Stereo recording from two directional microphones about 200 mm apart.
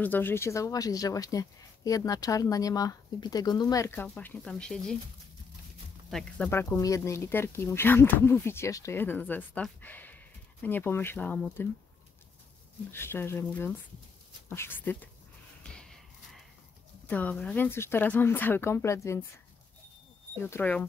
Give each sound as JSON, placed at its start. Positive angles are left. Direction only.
{"t": 0.0, "sound": "speech", "side_deg": 10}
{"t": 6.0, "sound": "speech", "side_deg": 5}
{"t": 12.9, "sound": "speech", "side_deg": 10}
{"t": 15.6, "sound": "a sound", "side_deg": 5}
{"t": 17.1, "sound": "speech", "side_deg": 5}
{"t": 20.4, "sound": "speech", "side_deg": 10}